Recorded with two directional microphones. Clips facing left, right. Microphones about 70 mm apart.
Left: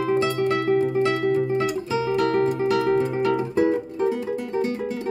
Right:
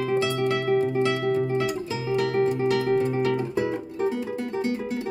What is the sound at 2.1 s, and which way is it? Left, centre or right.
Music, left.